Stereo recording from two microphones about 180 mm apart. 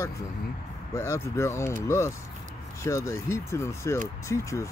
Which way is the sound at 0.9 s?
15° left (ahead or behind).